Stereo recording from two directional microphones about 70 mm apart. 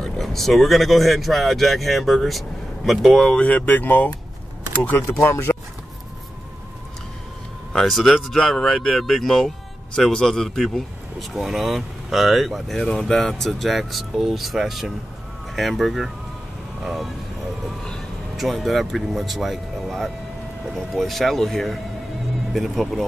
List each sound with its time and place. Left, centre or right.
0.0 s speech: centre
3.2 s speech: centre; by 5.6 s left
7.7 s speech: centre
18.3 s speech: centre